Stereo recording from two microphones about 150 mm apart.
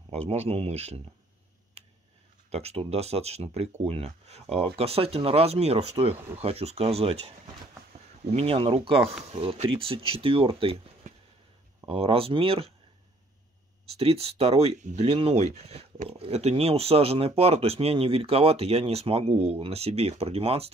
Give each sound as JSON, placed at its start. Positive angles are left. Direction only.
{"t": 0.1, "sound": "speech", "side_deg": -45}
{"t": 2.5, "sound": "speech", "side_deg": -45}
{"t": 13.9, "sound": "speech", "side_deg": -45}